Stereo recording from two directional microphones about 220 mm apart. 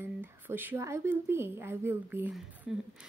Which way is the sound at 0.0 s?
10° right (ahead or behind).